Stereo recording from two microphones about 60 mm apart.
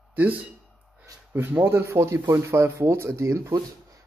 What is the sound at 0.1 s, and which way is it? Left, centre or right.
Speech, right.